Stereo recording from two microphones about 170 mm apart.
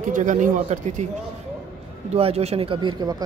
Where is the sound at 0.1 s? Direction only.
50° right (ahead or behind).